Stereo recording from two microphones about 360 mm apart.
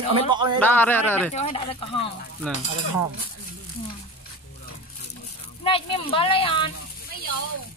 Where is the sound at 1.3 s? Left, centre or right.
Centre.